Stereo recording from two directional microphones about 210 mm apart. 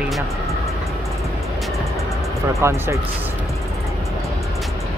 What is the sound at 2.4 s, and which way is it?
Speech, 15° right (ahead or behind).